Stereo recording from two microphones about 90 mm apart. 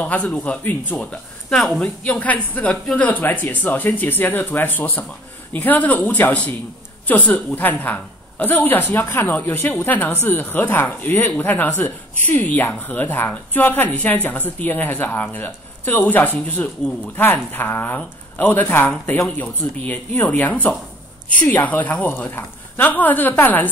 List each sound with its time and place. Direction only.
0.0 s speech: 15° left (ahead or behind)
1.5 s speech: 5° left (ahead or behind)
2.0 s speech: 15° left (ahead or behind)